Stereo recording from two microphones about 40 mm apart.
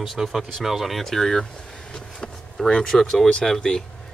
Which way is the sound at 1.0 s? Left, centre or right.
Centre.